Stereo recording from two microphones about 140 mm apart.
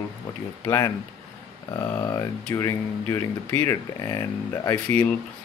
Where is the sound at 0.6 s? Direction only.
25° left (ahead or behind).